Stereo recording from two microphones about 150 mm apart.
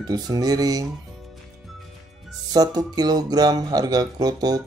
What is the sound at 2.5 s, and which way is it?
Speech, 25° right (ahead or behind).